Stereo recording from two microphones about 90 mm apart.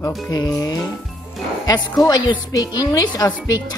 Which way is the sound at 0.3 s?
40° left (ahead or behind).